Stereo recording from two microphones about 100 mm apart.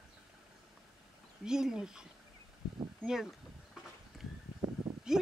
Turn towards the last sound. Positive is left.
turn(degrees=-5)  # may be behind; listen again after turning